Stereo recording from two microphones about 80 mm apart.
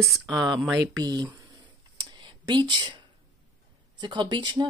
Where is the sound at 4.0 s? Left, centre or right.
Right.